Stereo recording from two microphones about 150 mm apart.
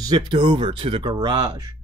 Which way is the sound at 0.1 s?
30° right (ahead or behind).